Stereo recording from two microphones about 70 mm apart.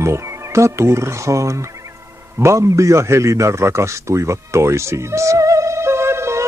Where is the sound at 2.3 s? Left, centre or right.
Right.